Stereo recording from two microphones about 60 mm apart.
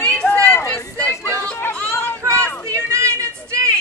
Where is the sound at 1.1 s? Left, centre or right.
Left.